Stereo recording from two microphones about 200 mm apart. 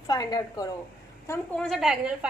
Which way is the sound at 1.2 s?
10° left (ahead or behind).